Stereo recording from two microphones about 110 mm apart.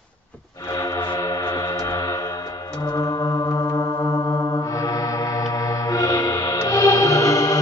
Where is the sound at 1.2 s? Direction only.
30° left (ahead or behind).